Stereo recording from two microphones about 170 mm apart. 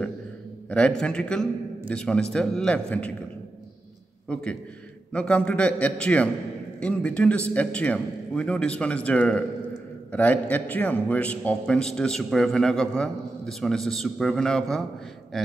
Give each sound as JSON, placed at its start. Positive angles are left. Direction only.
{"t": 0.7, "sound": "a man's voice", "side_deg": 5}
{"t": 4.3, "sound": "a man's voice", "side_deg": 5}